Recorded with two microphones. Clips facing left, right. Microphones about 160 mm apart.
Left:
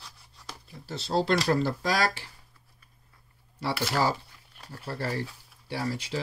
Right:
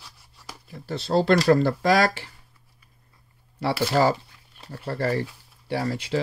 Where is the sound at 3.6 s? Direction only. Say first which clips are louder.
Right 6 dB; 60° right (ahead or behind).